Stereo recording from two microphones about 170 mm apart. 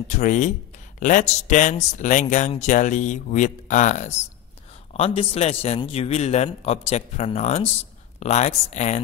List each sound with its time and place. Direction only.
0.1 s a man's voice: 45° left (ahead or behind)